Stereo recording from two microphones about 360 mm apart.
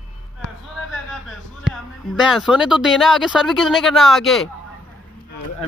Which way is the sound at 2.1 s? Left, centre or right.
Centre.